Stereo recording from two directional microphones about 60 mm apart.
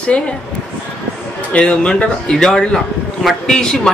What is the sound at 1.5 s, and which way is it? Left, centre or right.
Speech, centre.